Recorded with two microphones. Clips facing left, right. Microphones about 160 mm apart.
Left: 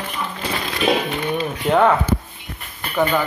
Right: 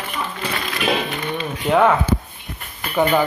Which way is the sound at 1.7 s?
Centre (ahead or behind).